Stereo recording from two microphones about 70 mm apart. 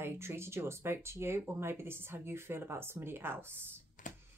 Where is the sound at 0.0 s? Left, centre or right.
Right.